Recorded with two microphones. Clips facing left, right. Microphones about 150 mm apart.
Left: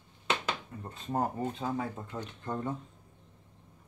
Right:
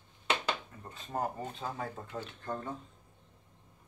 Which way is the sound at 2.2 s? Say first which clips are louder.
Left 7 dB; 15° left (ahead or behind).